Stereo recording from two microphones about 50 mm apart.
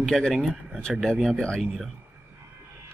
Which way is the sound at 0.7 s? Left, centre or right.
Centre.